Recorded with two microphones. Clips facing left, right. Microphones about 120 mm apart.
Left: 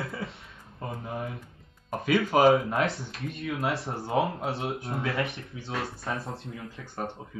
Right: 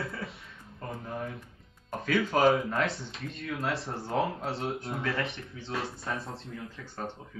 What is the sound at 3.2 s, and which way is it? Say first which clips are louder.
Speech: left 5 dB; centre (ahead or behind).